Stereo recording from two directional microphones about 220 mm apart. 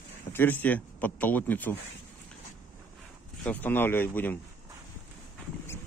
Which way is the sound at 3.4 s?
10° left (ahead or behind).